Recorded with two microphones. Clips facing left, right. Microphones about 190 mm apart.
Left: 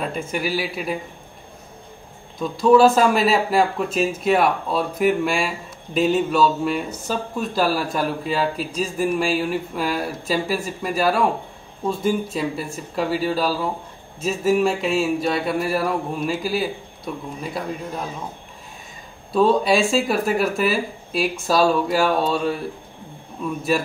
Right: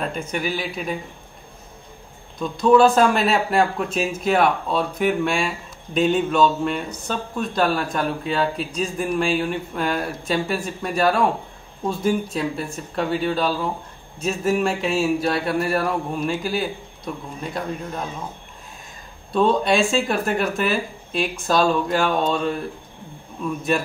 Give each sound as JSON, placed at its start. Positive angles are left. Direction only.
{"t": 0.0, "sound": "speech", "side_deg": 5}
{"t": 2.3, "sound": "speech", "side_deg": 5}
{"t": 19.3, "sound": "speech", "side_deg": 5}